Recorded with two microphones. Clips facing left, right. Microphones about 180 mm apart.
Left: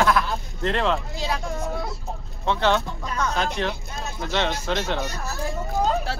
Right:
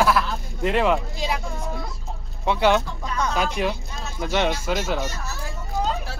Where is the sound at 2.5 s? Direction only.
10° right (ahead or behind).